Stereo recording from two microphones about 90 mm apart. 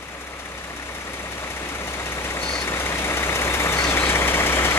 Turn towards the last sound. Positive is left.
turn(degrees=25)  # may be behind; listen again after turning